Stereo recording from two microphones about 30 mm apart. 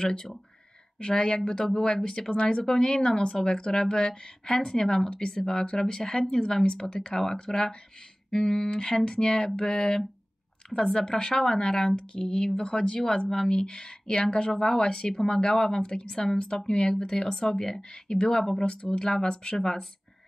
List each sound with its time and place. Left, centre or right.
0.0 s speech: left
8.6 s speech: left
16.3 s speech: left
18.0 s speech: left
18.4 s speech: centre
19.6 s speech: centre